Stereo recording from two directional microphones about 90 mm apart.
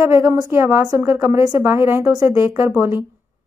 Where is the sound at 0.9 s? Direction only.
35° right (ahead or behind).